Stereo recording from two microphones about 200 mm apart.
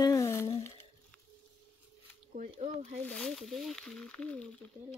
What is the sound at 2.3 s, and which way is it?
Speech, 40° right (ahead or behind).